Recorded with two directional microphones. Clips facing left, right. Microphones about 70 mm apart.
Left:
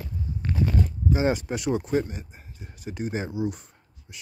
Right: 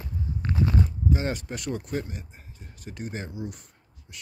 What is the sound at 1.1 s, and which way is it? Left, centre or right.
Speech, centre.